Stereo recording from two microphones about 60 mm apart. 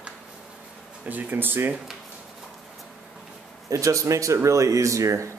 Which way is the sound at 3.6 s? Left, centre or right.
Right.